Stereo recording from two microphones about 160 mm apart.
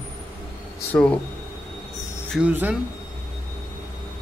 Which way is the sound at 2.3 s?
10° right (ahead or behind).